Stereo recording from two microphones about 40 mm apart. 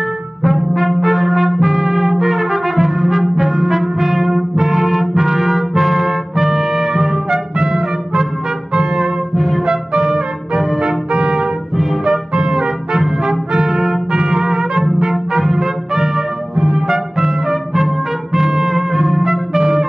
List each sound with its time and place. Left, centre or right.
0.4 s trumpet: centre
4.0 s brass instrument: centre
9.7 s trumpet: centre
11.7 s music: centre
12.0 s music: centre
13.2 s trumpet: centre
16.5 s music: centre